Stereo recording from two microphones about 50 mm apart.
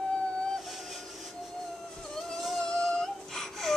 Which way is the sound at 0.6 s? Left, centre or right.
Centre.